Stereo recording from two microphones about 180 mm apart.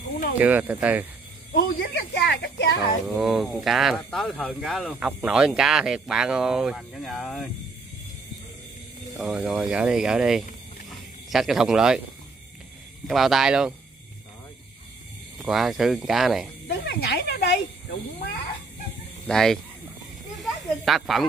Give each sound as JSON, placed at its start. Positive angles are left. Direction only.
{"t": 0.4, "sound": "speech", "side_deg": -10}
{"t": 1.5, "sound": "a woman's voice", "side_deg": 65}
{"t": 3.2, "sound": "speech", "side_deg": 0}
{"t": 9.1, "sound": "speech", "side_deg": 0}
{"t": 10.9, "sound": "a sound", "side_deg": 0}
{"t": 13.0, "sound": "speech", "side_deg": 0}
{"t": 15.3, "sound": "speech", "side_deg": 0}
{"t": 16.6, "sound": "speech", "side_deg": 60}
{"t": 19.2, "sound": "speech", "side_deg": 5}
{"t": 20.3, "sound": "snake", "side_deg": 0}